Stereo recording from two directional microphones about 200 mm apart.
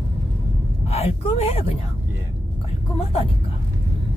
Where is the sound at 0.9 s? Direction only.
30° left (ahead or behind).